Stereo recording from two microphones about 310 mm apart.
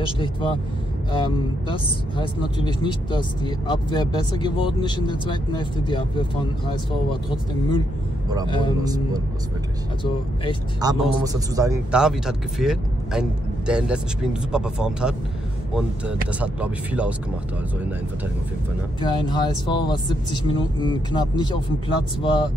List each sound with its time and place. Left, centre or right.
0.0 s speech: centre
8.8 s speech: centre
10.8 s a man's voice: centre
18.9 s speech: centre